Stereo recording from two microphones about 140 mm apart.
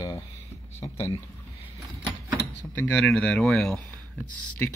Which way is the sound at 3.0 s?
5° left (ahead or behind).